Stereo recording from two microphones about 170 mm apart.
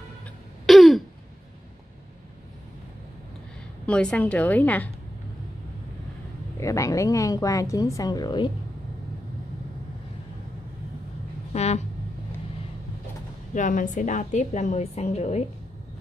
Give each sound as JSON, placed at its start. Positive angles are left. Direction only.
{"t": 0.7, "sound": "throat clearing", "side_deg": 0}
{"t": 3.8, "sound": "a woman's voice", "side_deg": 5}
{"t": 6.6, "sound": "speech", "side_deg": 20}
{"t": 11.5, "sound": "a sound", "side_deg": 40}
{"t": 13.6, "sound": "a woman's voice", "side_deg": 50}